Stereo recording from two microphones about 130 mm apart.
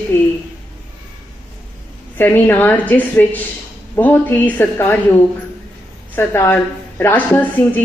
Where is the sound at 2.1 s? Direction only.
15° left (ahead or behind).